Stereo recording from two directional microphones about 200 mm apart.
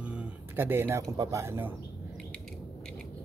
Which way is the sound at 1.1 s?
15° right (ahead or behind).